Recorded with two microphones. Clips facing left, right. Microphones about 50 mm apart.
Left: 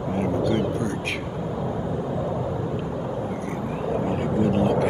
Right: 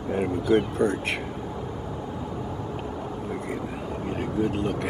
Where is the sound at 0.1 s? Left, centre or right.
Centre.